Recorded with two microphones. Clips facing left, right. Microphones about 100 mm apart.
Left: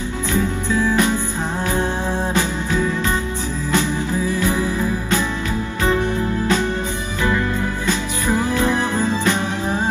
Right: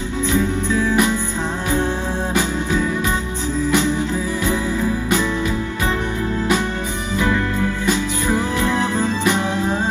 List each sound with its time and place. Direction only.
0.3 s music: 20° right (ahead or behind)
7.8 s music: 15° right (ahead or behind)